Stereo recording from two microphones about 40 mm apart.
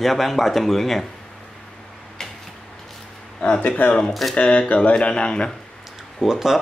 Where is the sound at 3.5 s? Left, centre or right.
Left.